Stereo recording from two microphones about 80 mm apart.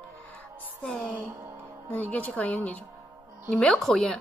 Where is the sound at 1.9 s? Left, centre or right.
Centre.